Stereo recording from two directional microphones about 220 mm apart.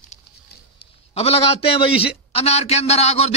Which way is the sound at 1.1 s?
25° left (ahead or behind).